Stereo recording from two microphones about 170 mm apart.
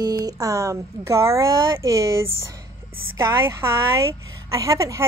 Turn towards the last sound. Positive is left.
turn(degrees=-20)  # may be behind; listen again after turning